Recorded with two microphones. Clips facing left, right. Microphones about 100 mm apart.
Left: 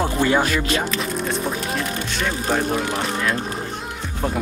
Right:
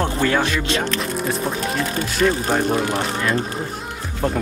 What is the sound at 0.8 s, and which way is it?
Speech, centre (ahead or behind).